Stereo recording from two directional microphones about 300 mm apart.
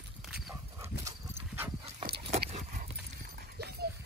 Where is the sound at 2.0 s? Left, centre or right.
Right.